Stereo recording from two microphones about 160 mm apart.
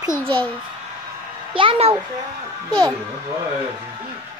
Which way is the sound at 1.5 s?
35° right (ahead or behind).